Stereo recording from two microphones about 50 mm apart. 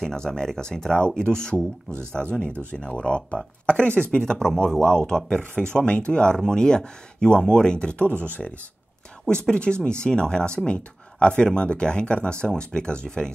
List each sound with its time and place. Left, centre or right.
0.0 s speech: centre
9.5 s speech: centre